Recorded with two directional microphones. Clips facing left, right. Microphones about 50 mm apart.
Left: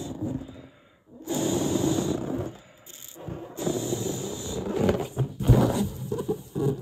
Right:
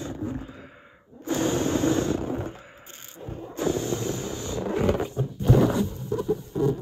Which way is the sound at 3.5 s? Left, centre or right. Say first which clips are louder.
Right 2 dB; right.